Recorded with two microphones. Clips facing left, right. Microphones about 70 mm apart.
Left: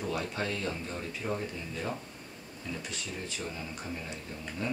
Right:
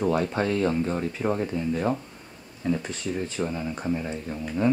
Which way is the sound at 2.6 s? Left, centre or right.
Right.